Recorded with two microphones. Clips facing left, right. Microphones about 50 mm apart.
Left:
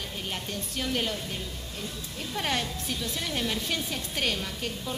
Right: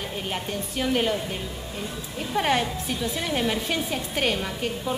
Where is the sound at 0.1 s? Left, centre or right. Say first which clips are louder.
Right 5 dB; centre.